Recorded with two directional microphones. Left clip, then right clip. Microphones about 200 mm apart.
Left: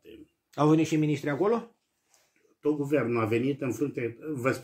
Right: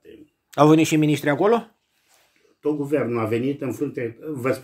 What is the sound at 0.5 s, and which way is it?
Speech, 40° right (ahead or behind).